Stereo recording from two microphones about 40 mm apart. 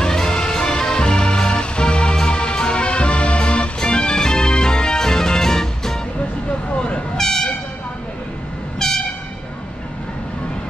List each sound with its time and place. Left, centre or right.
0.0 s music: centre
7.2 s train: centre
8.7 s train: centre